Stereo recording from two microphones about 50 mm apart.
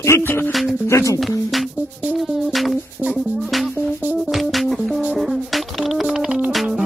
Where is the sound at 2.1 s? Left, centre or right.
Centre.